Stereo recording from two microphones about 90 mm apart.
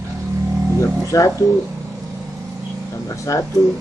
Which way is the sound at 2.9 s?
35° left (ahead or behind).